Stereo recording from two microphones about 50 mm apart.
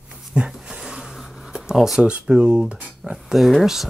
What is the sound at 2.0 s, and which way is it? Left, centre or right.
Speech, right.